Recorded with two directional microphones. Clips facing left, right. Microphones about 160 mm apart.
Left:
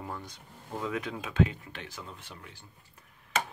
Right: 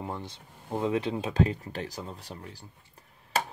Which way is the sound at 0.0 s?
25° right (ahead or behind).